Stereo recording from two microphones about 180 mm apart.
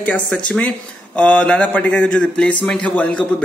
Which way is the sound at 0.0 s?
5° left (ahead or behind).